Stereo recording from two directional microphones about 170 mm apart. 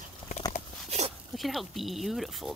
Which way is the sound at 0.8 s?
40° right (ahead or behind).